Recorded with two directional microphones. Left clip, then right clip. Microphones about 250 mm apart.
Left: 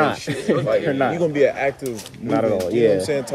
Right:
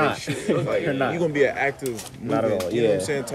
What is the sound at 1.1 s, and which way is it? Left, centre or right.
Speech, centre.